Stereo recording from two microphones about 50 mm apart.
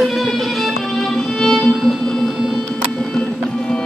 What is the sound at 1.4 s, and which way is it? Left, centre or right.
Music, centre.